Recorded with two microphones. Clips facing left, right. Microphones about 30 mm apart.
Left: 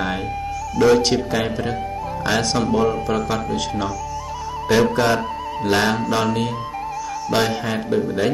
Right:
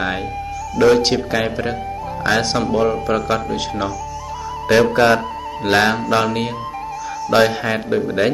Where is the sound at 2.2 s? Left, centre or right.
Centre.